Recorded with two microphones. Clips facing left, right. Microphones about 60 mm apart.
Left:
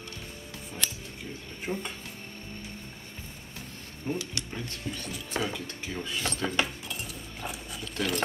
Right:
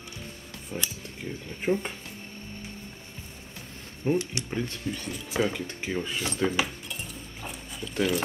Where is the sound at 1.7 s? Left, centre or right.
Centre.